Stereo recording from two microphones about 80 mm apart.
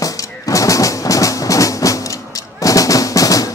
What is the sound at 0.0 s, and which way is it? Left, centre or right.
Music, left.